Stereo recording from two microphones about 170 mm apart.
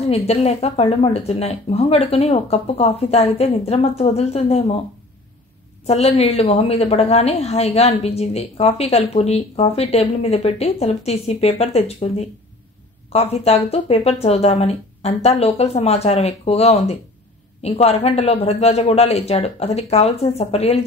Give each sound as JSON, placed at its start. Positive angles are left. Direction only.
{"t": 0.1, "sound": "a woman's voice", "side_deg": 35}
{"t": 5.9, "sound": "a woman's voice", "side_deg": 40}